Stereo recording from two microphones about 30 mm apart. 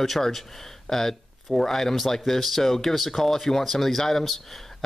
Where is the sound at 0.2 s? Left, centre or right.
Centre.